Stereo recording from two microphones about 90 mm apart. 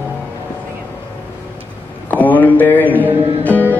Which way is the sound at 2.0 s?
20° left (ahead or behind).